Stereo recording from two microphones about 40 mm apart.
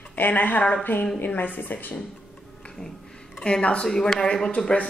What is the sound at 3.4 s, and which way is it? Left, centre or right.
Speech, left.